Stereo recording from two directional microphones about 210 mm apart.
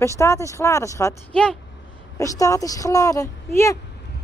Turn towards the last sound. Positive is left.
turn(degrees=15)  # may be behind; listen again after turning